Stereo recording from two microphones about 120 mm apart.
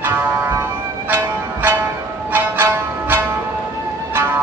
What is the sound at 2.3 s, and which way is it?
Music, 15° right (ahead or behind).